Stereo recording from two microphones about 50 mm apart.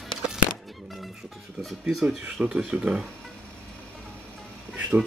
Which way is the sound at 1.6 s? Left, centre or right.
Centre.